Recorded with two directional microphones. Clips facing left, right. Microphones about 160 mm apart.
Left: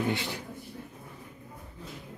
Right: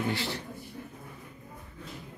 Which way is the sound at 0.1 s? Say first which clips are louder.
Even; 15° left (ahead or behind).